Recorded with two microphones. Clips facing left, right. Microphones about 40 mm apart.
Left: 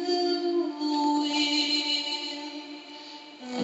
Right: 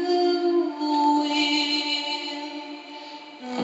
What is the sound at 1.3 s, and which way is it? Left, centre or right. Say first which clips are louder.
Music: right 4 dB; right.